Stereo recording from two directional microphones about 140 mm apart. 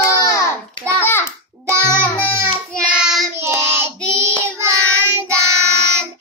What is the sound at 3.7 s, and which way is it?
Child singing, 15° right (ahead or behind).